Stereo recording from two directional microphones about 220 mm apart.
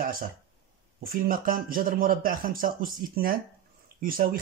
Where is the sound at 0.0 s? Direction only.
40° right (ahead or behind).